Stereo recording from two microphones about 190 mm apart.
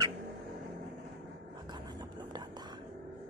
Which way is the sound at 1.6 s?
25° right (ahead or behind).